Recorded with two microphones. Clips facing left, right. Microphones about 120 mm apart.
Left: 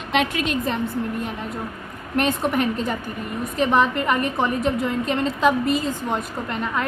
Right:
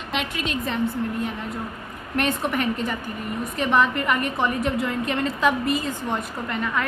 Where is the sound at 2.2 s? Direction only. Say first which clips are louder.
Left 2 dB; 35° left (ahead or behind).